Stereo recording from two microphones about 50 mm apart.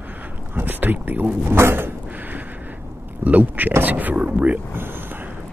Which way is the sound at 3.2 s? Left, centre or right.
Right.